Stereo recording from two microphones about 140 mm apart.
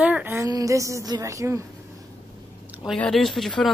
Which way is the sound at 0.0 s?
10° right (ahead or behind).